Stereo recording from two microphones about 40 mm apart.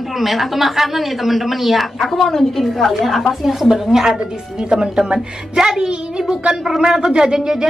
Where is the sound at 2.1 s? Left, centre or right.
Centre.